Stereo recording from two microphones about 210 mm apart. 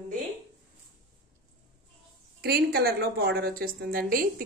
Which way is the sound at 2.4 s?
50° right (ahead or behind).